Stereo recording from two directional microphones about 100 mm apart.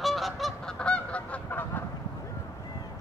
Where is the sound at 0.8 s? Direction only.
10° left (ahead or behind).